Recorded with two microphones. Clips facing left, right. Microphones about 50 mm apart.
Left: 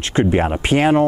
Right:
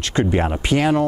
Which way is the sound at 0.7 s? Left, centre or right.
Left.